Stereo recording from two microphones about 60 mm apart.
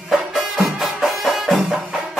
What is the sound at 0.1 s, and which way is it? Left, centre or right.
Music, centre.